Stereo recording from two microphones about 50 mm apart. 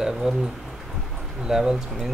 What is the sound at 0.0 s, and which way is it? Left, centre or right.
Speech, centre.